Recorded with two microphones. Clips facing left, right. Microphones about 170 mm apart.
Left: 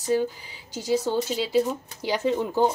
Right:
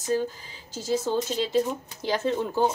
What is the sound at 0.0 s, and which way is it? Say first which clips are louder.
A woman's voice: left 2 dB; 15° left (ahead or behind).